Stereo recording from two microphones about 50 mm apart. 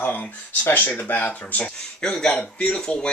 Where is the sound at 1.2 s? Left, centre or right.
Left.